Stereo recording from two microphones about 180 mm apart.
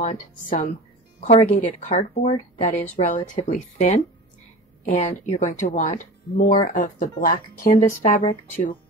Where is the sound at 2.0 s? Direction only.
40° left (ahead or behind).